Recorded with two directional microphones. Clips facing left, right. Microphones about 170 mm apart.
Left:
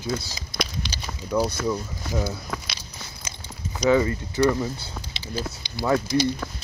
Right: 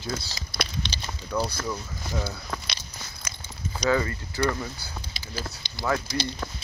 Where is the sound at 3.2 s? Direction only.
25° left (ahead or behind).